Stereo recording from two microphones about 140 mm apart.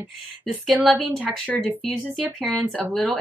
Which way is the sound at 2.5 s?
5° left (ahead or behind).